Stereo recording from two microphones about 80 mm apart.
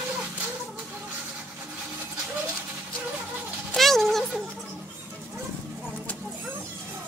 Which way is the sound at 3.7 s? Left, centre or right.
Centre.